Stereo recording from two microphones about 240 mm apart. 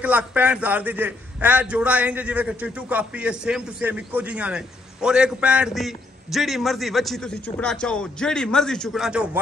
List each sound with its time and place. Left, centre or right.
0.0 s a man's voice: centre